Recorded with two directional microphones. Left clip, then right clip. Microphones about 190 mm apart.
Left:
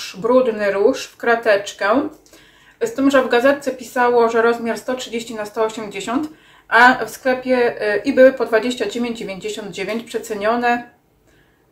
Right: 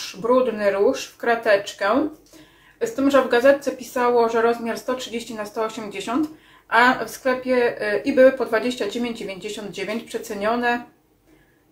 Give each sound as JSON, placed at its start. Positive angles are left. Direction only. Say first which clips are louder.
{"t": 0.2, "sound": "speech", "louder": "left 3 dB", "side_deg": 5}